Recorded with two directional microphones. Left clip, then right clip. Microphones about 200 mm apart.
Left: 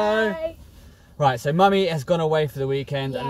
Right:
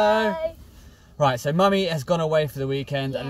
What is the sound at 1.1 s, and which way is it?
Speech, 15° right (ahead or behind).